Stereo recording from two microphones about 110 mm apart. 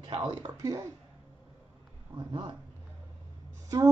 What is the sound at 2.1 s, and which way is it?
Speech, 45° right (ahead or behind).